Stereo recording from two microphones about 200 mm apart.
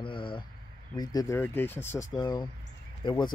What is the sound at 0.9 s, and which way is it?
Speech, 15° left (ahead or behind).